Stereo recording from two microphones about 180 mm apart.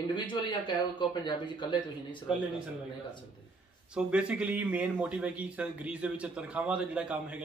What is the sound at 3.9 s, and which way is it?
Speech, 5° right (ahead or behind).